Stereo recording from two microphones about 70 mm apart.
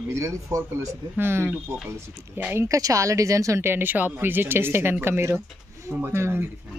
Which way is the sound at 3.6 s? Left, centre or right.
Right.